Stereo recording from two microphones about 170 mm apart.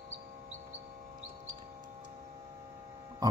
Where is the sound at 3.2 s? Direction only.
20° right (ahead or behind).